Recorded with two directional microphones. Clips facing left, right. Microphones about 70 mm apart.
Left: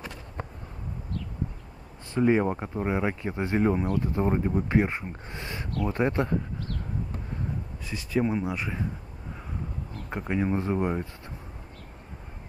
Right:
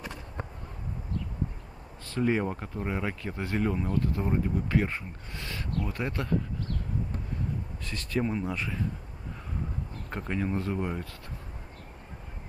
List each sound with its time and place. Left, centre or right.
2.0 s speech: left
3.8 s speech: centre
4.1 s speech: left
7.8 s speech: centre
10.0 s speech: centre